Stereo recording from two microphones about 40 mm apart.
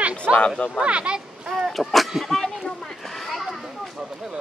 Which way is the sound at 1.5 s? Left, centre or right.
Centre.